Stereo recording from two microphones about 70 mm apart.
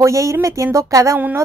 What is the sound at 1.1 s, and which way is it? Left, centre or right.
Speech, right.